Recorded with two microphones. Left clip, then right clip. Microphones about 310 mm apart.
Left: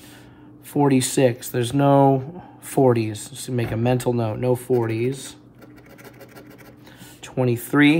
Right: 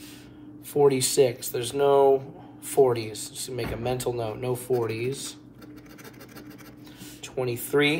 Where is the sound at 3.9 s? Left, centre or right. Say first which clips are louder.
Left 5 dB; left.